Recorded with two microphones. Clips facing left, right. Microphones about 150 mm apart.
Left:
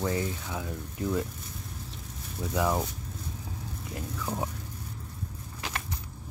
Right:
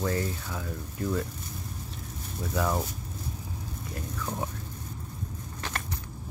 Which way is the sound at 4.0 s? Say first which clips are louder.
Left 1 dB; 10° left (ahead or behind).